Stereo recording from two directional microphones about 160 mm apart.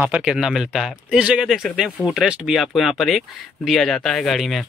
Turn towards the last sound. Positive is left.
turn(degrees=0)  # may be behind; listen again after turning